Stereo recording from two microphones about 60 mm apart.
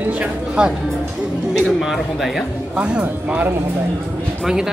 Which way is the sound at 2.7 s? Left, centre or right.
Centre.